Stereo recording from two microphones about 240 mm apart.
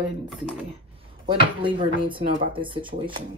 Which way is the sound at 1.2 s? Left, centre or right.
Right.